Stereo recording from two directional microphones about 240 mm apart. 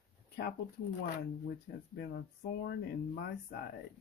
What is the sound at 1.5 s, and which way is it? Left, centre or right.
Speech, left.